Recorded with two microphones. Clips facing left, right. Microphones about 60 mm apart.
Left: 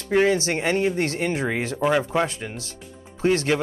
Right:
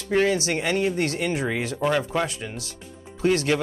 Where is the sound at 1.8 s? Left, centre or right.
Centre.